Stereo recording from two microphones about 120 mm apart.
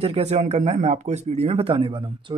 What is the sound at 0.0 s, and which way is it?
Speech, 60° right (ahead or behind).